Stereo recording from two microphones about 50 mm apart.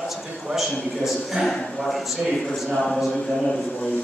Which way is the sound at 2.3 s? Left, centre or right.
Centre.